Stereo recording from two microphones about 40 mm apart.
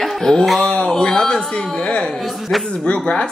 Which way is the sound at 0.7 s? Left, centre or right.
Centre.